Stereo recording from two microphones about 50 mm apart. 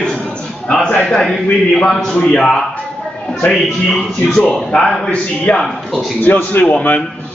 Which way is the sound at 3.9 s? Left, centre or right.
Centre.